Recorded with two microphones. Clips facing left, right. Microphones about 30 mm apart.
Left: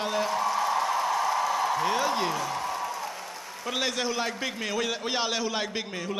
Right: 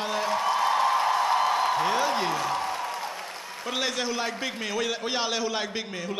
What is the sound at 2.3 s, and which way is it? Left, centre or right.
Speech, right.